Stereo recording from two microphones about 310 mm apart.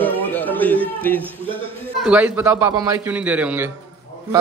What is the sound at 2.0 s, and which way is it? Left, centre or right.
A man's voice, centre.